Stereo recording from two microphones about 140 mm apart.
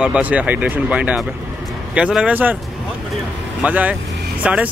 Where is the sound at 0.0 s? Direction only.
10° right (ahead or behind).